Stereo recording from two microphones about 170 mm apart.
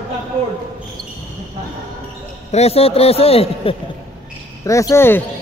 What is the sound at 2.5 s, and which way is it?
A man's voice, 35° left (ahead or behind).